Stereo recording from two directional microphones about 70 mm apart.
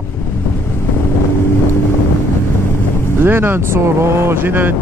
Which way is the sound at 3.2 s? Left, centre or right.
Right.